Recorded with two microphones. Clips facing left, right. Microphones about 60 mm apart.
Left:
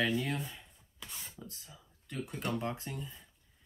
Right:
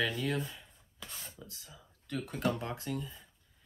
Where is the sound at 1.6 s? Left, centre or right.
Centre.